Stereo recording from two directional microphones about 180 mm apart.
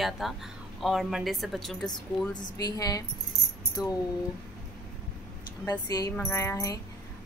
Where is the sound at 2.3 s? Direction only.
20° left (ahead or behind).